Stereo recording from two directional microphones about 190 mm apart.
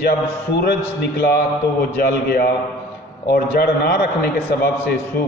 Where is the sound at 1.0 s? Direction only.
55° left (ahead or behind).